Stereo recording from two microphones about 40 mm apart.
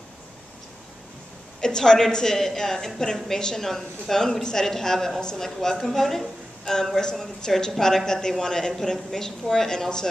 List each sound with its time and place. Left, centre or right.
1.6 s a woman's voice: centre